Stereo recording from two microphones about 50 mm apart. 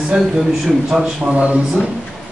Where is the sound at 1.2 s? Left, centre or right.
Right.